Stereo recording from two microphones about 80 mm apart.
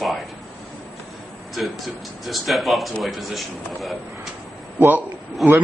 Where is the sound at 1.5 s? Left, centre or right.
Centre.